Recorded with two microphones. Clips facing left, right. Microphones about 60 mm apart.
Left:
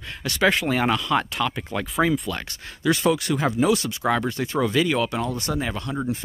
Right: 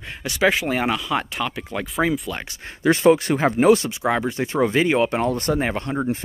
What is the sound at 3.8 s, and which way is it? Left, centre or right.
Speech, centre.